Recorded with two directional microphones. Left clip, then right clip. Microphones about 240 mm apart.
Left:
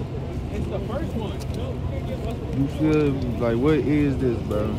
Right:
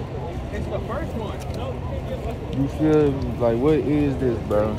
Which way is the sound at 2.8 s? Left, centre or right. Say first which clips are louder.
Right 3 dB; centre.